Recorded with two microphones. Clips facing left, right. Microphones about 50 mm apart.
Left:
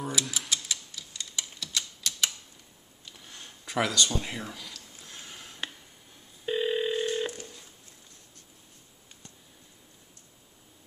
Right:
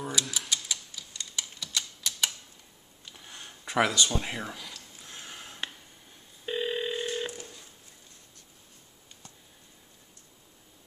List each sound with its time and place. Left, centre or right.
0.0 s typewriter: centre
3.1 s a sound: centre
6.4 s telephone: centre